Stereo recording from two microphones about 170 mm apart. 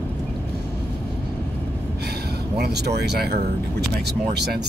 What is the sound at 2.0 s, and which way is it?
Speech, 70° right (ahead or behind).